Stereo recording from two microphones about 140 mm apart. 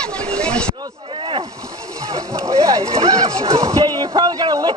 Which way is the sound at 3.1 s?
25° right (ahead or behind).